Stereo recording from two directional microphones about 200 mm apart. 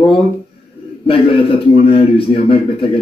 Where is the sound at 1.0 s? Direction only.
25° left (ahead or behind).